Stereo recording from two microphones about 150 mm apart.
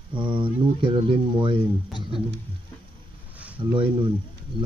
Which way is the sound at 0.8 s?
35° right (ahead or behind).